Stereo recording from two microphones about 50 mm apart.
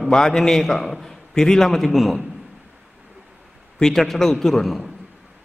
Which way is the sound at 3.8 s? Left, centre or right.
Centre.